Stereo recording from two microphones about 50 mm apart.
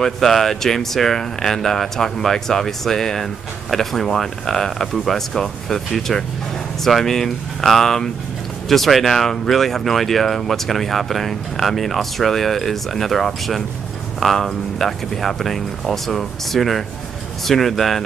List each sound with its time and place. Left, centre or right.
0.0 s speech: centre